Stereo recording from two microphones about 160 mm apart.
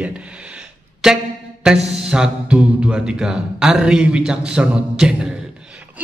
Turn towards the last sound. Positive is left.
turn(degrees=-5)  # may be behind; listen again after turning